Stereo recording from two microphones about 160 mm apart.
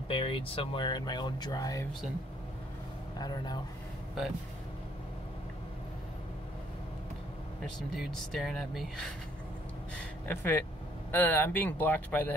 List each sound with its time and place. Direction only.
0.1 s speech: 35° left (ahead or behind)
3.2 s speech: 25° left (ahead or behind)
7.9 s speech: centre (ahead or behind)
10.2 s speech: 10° left (ahead or behind)